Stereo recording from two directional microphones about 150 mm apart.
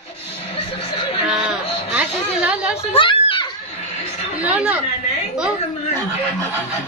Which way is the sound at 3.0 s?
35° left (ahead or behind).